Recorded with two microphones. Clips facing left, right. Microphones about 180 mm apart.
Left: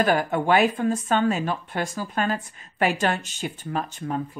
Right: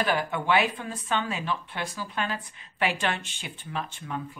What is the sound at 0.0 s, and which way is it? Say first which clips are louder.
Speech: left 5 dB; 45° left (ahead or behind).